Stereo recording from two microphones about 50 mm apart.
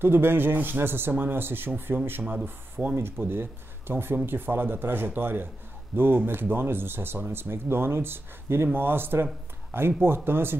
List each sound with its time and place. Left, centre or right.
0.0 s speech: right